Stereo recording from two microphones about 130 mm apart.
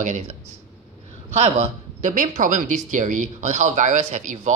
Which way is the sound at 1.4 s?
60° right (ahead or behind).